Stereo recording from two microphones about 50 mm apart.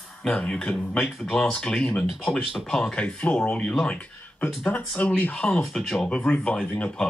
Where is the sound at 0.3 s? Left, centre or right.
Left.